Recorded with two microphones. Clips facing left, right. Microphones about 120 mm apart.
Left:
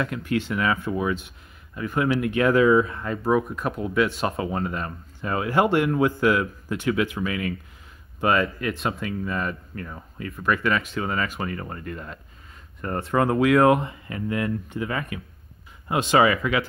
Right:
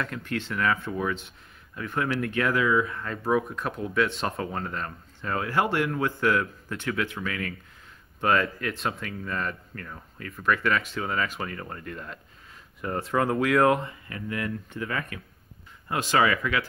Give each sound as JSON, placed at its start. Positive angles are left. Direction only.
{"t": 0.0, "sound": "speech", "side_deg": 10}
{"t": 2.4, "sound": "speech", "side_deg": 30}
{"t": 3.2, "sound": "speech", "side_deg": 0}
{"t": 13.8, "sound": "speech", "side_deg": 25}